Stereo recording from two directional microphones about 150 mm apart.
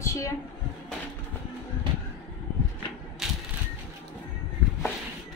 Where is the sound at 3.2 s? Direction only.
Centre (ahead or behind).